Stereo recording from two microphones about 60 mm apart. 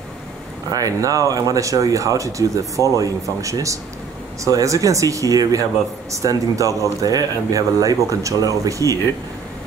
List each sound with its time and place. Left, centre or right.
0.7 s speech: right
6.1 s speech: right